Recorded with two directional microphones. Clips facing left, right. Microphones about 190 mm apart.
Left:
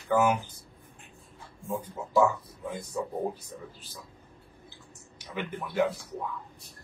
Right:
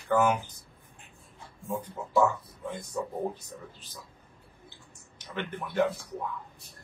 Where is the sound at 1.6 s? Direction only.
10° left (ahead or behind).